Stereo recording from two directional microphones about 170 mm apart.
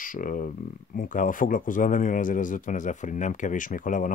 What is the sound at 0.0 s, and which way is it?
Speech, 50° left (ahead or behind).